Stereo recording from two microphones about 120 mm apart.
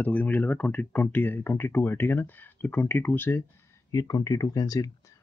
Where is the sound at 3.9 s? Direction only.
30° left (ahead or behind).